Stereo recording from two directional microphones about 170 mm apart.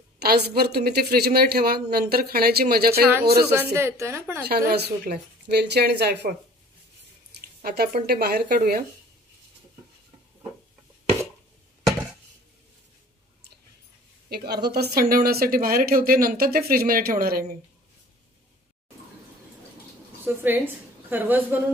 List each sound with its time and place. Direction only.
0.2 s speech: 65° right (ahead or behind)
3.4 s speech: 15° right (ahead or behind)
4.5 s speech: 70° right (ahead or behind)
7.4 s speech: 65° right (ahead or behind)
14.6 s speech: 70° right (ahead or behind)
20.2 s a woman's voice: 10° right (ahead or behind)